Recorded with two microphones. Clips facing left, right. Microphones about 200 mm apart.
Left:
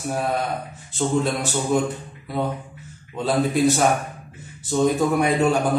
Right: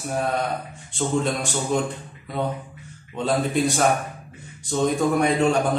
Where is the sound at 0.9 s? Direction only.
5° left (ahead or behind).